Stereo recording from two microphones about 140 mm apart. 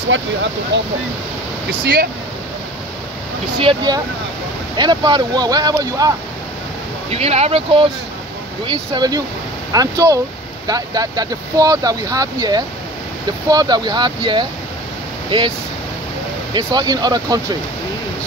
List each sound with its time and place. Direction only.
3.5 s speech: 35° right (ahead or behind)
7.1 s speech: 50° right (ahead or behind)
8.6 s speech: 30° right (ahead or behind)
16.5 s speech: 30° right (ahead or behind)